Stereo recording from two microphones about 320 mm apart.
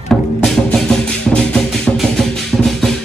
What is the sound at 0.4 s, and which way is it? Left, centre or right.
Music, centre.